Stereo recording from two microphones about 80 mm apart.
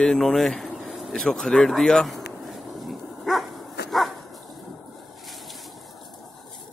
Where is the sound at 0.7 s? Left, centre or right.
Centre.